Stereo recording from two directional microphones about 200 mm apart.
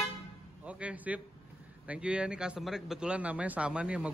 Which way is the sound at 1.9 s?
5° right (ahead or behind).